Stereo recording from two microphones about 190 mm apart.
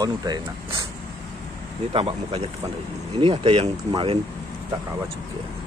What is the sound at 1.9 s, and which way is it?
Speech, 30° right (ahead or behind).